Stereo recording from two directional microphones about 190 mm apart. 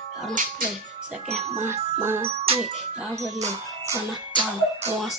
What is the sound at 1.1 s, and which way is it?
Music, 35° right (ahead or behind).